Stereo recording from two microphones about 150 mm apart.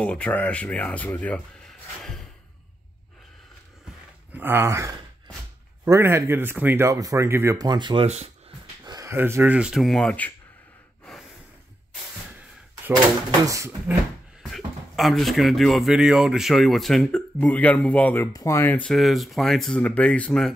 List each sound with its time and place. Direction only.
0.0 s speech: 10° left (ahead or behind)
4.3 s speech: 15° right (ahead or behind)
7.6 s speech: 30° right (ahead or behind)
8.8 s a sound: 25° right (ahead or behind)
9.1 s speech: 15° right (ahead or behind); by 10.3 s 10° left (ahead or behind)
14.4 s speech: centre (ahead or behind)